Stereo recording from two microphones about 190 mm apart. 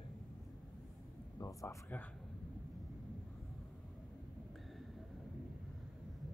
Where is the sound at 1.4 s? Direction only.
15° left (ahead or behind).